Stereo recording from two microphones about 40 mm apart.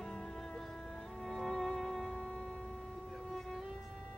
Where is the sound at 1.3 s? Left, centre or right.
Centre.